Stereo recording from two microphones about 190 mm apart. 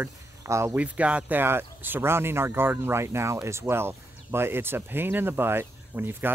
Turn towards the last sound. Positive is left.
turn(degrees=-10)  # may be behind; listen again after turning